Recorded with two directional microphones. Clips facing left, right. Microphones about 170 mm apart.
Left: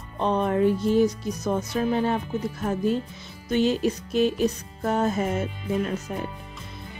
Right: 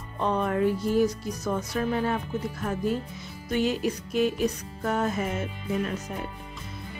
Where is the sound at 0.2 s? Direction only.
25° left (ahead or behind).